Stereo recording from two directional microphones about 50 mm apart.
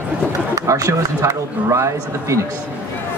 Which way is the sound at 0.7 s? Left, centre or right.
Right.